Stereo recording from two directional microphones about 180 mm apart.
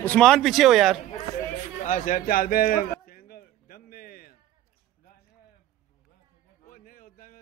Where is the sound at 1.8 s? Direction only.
45° left (ahead or behind).